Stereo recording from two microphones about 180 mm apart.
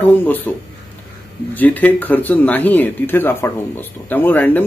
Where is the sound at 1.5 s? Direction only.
10° left (ahead or behind).